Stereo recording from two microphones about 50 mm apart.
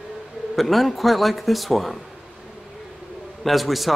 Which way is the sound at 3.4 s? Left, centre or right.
Centre.